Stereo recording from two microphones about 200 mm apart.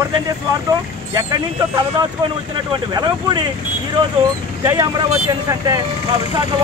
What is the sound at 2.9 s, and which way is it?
Speech, 20° right (ahead or behind).